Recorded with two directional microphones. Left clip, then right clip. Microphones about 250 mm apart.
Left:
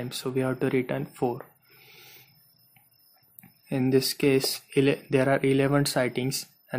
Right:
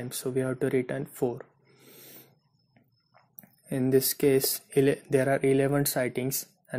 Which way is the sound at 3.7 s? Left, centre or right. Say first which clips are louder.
Left 1 dB; centre.